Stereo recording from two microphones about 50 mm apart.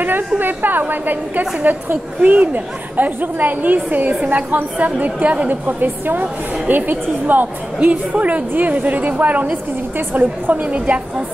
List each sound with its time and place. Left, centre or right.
0.4 s a woman's voice: right
4.2 s a woman's voice: right
4.5 s a woman's voice: right
10.7 s a woman's voice: right